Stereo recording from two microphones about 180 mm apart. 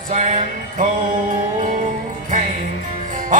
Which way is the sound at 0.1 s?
40° right (ahead or behind).